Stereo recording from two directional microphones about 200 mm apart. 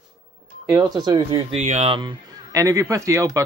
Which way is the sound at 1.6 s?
30° right (ahead or behind).